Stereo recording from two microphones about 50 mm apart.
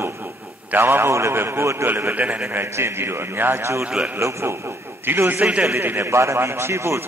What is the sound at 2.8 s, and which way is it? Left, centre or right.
Speech, right.